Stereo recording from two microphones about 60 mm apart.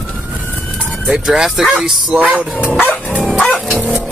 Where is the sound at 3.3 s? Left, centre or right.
Centre.